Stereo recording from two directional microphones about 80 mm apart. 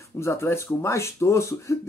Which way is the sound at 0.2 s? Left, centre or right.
Left.